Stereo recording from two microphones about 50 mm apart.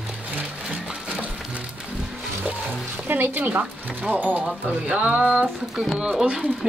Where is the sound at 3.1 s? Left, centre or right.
Right.